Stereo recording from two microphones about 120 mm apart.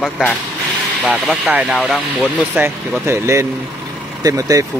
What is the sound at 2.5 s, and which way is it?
Speech, 20° right (ahead or behind).